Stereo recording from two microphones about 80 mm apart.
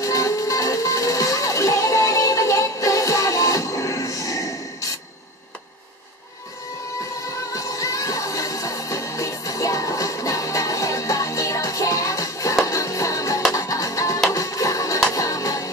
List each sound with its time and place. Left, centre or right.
0.0 s music: left
7.5 s music: left